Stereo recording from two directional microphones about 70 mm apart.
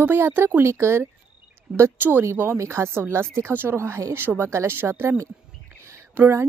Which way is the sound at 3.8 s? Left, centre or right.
Right.